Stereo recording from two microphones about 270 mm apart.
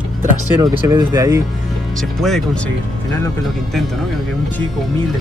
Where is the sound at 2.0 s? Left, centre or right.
Centre.